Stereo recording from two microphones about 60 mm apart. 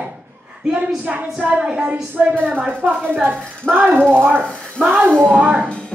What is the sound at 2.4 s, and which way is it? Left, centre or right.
A woman's voice, right.